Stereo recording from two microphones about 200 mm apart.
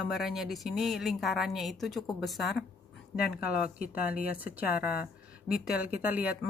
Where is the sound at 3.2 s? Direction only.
50° left (ahead or behind).